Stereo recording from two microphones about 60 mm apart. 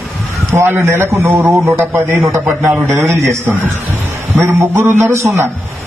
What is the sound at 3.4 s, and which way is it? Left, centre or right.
Speech, right.